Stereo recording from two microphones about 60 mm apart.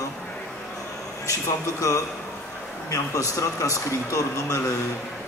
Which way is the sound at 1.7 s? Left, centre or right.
Left.